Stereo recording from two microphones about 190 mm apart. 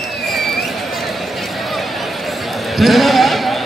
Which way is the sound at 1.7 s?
Centre (ahead or behind).